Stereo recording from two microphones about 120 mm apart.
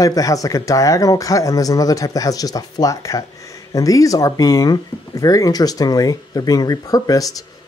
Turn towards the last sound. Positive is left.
turn(degrees=30)  # may be behind; listen again after turning